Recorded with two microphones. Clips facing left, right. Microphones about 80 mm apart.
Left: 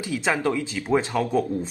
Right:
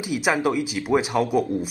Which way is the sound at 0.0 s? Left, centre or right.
Centre.